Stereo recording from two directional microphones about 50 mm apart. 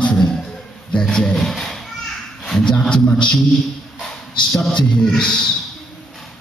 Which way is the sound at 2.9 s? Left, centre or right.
Centre.